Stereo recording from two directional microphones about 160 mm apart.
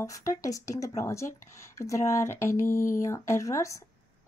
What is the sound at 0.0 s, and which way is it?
Speech, 20° left (ahead or behind).